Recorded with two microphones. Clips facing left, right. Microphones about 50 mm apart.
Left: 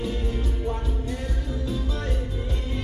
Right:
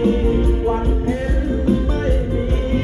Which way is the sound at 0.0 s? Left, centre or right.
Right.